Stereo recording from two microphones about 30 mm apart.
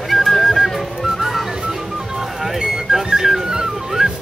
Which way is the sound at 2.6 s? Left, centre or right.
Centre.